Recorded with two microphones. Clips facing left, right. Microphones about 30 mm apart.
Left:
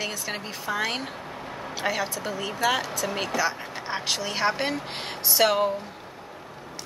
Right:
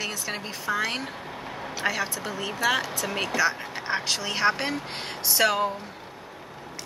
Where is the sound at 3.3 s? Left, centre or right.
Centre.